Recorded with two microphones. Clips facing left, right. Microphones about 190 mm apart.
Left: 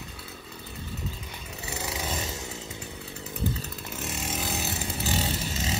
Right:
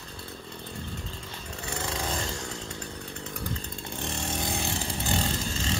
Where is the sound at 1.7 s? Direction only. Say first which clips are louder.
Right 1 dB; 5° left (ahead or behind).